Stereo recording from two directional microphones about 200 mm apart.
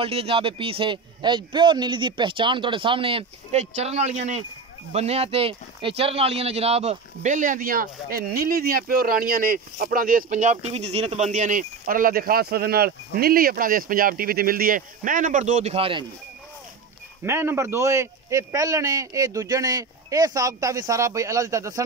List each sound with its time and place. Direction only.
0.0 s a man's voice: 30° right (ahead or behind)
17.2 s a man's voice: 10° right (ahead or behind)